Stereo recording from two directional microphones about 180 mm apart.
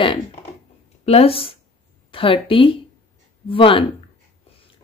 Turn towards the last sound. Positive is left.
turn(degrees=30)  # may be behind; listen again after turning